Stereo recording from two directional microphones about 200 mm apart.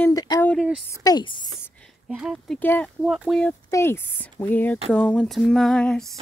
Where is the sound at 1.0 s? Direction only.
20° left (ahead or behind).